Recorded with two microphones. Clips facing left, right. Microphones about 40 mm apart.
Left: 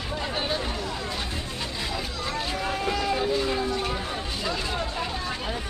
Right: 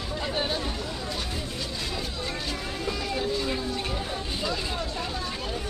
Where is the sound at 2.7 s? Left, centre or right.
Left.